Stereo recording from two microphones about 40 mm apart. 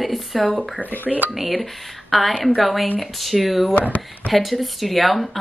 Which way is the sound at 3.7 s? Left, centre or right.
Left.